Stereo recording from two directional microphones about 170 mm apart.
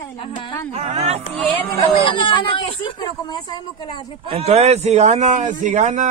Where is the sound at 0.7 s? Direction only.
40° right (ahead or behind).